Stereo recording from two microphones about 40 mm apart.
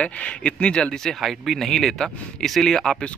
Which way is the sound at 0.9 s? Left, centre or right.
Centre.